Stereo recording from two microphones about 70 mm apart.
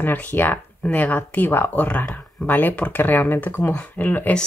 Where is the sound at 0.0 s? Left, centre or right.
Left.